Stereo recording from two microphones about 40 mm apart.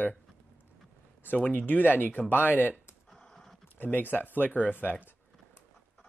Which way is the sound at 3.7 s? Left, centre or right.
Left.